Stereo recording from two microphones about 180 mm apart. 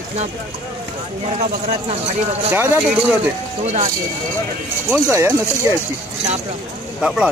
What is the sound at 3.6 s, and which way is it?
Speech, 40° right (ahead or behind).